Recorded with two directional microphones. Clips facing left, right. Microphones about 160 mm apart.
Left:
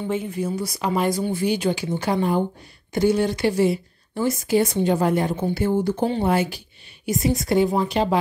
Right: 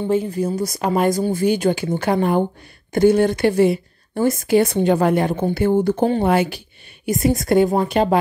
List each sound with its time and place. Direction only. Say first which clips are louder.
0.0 s speech: right 6 dB; 35° right (ahead or behind); by 6.6 s 65° right (ahead or behind)
7.1 s speech: right 4 dB; 55° right (ahead or behind)